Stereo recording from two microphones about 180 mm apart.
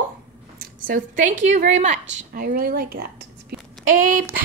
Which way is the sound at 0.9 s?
45° right (ahead or behind).